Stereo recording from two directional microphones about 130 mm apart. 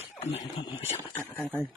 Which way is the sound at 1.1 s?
15° left (ahead or behind).